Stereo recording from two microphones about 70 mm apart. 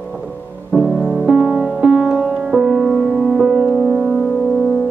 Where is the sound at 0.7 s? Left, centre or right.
Centre.